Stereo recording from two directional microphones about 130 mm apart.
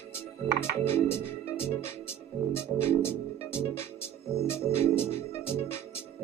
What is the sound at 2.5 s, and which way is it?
Music, 20° left (ahead or behind).